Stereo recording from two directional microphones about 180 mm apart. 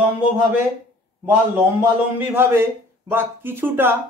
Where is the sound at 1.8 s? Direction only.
10° right (ahead or behind).